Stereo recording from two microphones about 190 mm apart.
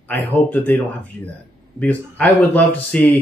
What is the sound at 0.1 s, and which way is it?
Speech, 10° left (ahead or behind).